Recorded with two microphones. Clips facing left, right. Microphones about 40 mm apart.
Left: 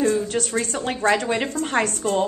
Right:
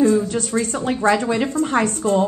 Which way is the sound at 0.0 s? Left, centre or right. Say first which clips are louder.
Right 4 dB; left.